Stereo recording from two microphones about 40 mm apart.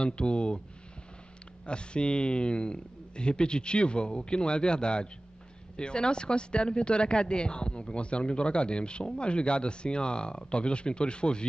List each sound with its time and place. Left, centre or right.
0.0 s speech: left
1.7 s speech: left